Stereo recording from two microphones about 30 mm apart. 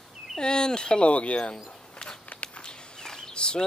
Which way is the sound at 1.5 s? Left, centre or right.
Left.